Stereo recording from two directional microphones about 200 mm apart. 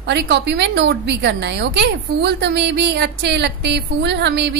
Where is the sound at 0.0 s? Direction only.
60° right (ahead or behind).